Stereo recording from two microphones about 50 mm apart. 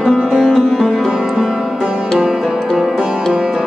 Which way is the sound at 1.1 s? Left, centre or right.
Centre.